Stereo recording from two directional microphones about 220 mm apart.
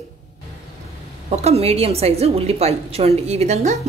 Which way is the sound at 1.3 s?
30° right (ahead or behind).